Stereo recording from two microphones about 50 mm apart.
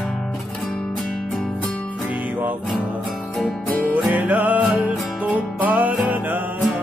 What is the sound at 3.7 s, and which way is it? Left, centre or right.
Music, left.